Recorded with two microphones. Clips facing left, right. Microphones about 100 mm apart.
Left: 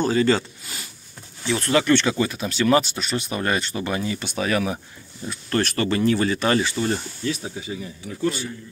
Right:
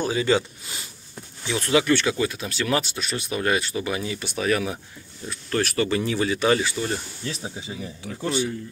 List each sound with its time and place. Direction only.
0.0 s speech: 10° right (ahead or behind)
1.5 s speech: 10° right (ahead or behind)
7.2 s speech: 30° right (ahead or behind)